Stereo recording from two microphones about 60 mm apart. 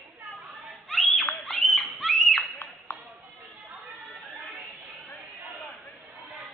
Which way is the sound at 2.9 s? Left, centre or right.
Left.